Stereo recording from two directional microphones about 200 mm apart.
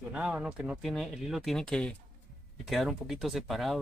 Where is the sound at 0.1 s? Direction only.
5° right (ahead or behind).